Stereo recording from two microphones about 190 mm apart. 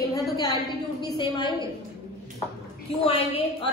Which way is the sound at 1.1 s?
25° left (ahead or behind).